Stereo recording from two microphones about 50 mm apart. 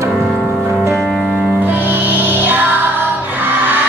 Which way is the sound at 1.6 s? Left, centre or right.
Right.